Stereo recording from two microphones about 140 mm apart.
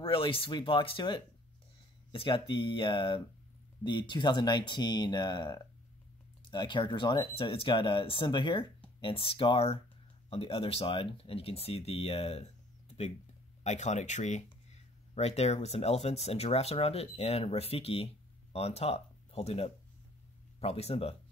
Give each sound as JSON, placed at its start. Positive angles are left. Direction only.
{"t": 0.0, "sound": "speech", "side_deg": 40}